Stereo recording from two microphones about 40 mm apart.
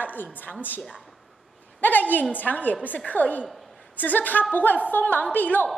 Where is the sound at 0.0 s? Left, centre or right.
Left.